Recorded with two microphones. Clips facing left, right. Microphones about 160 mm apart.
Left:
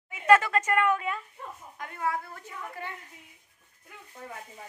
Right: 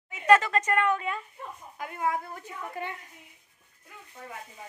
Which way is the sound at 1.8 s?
15° right (ahead or behind).